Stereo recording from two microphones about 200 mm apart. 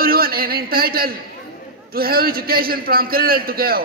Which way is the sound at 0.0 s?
50° right (ahead or behind).